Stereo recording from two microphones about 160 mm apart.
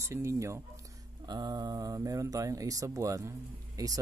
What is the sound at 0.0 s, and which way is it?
Speech, 15° right (ahead or behind).